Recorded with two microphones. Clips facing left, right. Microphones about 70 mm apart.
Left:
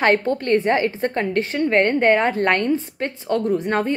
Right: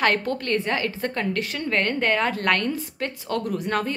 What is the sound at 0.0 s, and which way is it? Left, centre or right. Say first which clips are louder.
A woman's voice: left 4 dB; left.